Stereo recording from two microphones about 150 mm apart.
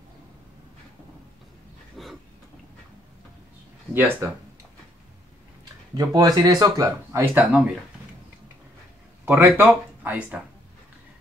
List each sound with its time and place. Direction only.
2.0 s a sound: centre (ahead or behind)
3.9 s speech: 15° right (ahead or behind)
5.9 s speech: 25° right (ahead or behind)
9.2 s speech: 10° right (ahead or behind)